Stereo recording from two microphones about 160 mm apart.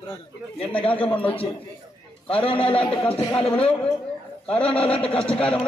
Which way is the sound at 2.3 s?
35° left (ahead or behind).